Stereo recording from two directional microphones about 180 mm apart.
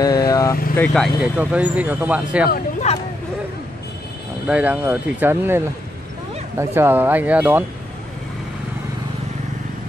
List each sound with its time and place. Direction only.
0.0 s vehicle: 20° left (ahead or behind)
0.7 s speech: centre (ahead or behind)
2.9 s speech: 40° left (ahead or behind)
4.5 s speech: 10° right (ahead or behind)
6.6 s speech: 15° right (ahead or behind)